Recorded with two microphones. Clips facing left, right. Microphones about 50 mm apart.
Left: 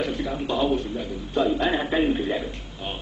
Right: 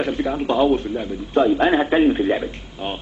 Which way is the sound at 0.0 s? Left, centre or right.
Right.